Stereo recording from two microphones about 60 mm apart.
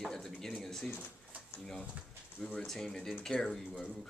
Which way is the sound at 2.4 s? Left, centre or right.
Centre.